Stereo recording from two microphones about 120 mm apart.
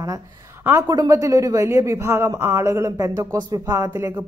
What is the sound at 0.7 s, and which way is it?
A woman's voice, 25° right (ahead or behind).